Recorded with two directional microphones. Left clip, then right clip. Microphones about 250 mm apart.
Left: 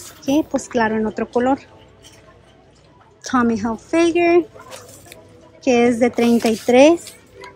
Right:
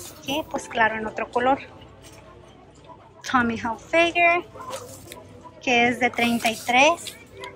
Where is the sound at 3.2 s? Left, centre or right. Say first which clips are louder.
Left 3 dB; left.